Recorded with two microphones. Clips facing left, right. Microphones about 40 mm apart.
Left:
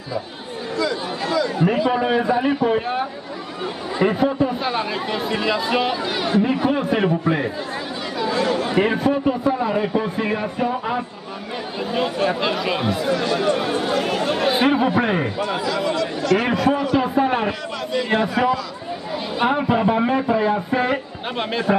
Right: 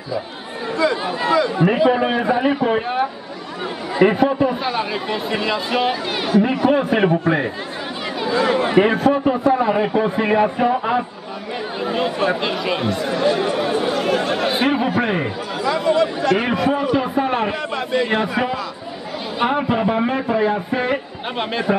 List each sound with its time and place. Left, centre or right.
0.7 s a man's voice: right
4.0 s speech: right
4.6 s speech: centre
6.0 s a man's voice: centre
8.2 s chatter: right
8.9 s a man's voice: centre
13.1 s speech: centre
13.5 s chatter: centre
15.0 s speech: centre
15.6 s chatter: centre
16.0 s chatter: right
16.5 s speech: right
17.0 s a man's voice: centre
17.5 s a man's voice: centre